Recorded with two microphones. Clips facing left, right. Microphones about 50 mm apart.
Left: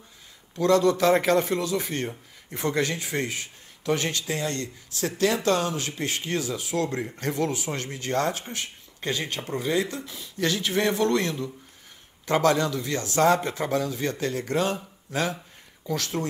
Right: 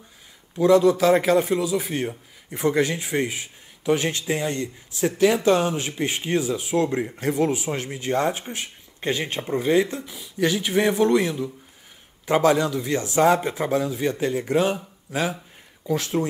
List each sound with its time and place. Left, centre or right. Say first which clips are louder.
0.6 s a man's voice: right 4 dB; centre
10.0 s a man's voice: right 4 dB; centre